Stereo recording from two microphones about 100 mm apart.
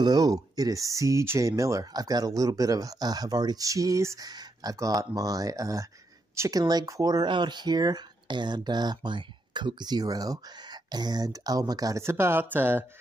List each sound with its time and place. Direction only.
0.0 s a woman's voice: 40° right (ahead or behind)
6.6 s speech: 40° right (ahead or behind)
12.0 s speech: 25° right (ahead or behind)